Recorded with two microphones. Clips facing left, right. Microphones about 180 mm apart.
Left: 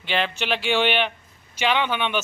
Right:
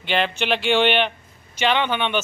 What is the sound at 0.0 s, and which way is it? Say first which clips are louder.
A man's voice: right 3 dB; centre (ahead or behind).